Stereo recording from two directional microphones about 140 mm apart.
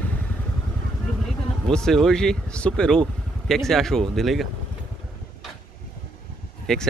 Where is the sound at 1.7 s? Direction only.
5° left (ahead or behind).